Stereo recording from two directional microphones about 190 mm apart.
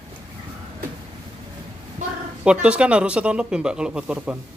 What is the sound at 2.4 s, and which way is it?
Speech, 5° right (ahead or behind).